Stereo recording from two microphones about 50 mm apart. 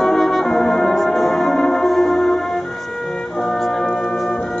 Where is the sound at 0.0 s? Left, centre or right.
Centre.